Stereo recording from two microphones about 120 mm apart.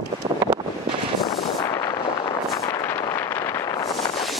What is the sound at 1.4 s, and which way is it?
Artillery fire, 30° left (ahead or behind).